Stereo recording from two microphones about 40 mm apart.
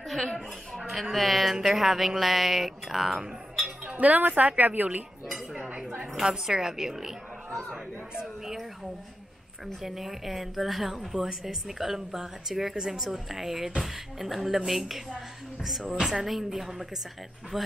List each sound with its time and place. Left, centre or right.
1.1 s a woman's voice: centre
3.9 s speech: right
6.1 s a woman's voice: centre
9.8 s a woman's voice: centre
15.8 s speech: centre
16.1 s a woman's voice: centre